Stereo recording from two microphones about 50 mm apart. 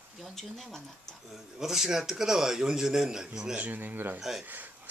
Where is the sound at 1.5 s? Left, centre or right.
Centre.